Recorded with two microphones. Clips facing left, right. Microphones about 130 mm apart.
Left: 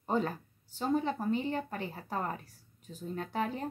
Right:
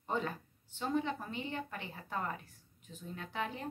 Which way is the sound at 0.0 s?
40° left (ahead or behind).